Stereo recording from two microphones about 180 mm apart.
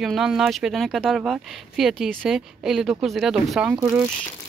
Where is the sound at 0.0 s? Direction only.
Centre (ahead or behind).